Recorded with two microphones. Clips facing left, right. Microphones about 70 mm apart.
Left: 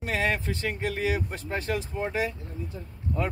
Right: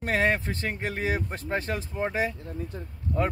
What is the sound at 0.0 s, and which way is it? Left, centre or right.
Speech, right.